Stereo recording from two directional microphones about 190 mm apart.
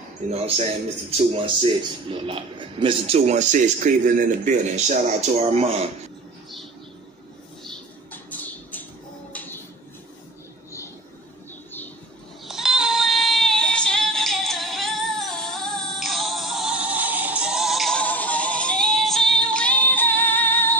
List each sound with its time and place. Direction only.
1.1 s a man's voice: 30° right (ahead or behind)
7.6 s a sound: 5° left (ahead or behind)
12.4 s music: centre (ahead or behind)